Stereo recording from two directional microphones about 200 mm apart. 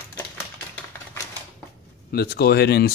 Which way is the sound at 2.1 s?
55° left (ahead or behind).